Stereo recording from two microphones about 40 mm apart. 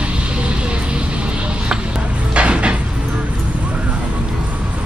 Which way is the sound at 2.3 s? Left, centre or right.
Right.